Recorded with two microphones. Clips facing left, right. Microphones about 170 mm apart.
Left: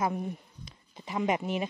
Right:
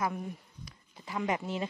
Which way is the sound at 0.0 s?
25° left (ahead or behind).